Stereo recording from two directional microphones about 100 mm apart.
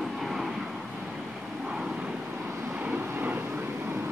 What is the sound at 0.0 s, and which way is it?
Vehicle, centre (ahead or behind).